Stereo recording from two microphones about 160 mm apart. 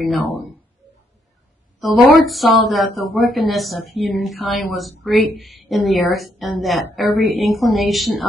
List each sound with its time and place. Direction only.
0.0 s a woman's voice: centre (ahead or behind)
1.8 s a woman's voice: centre (ahead or behind)